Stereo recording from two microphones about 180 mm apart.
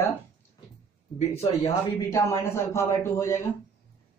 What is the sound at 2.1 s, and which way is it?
Speech, 15° left (ahead or behind).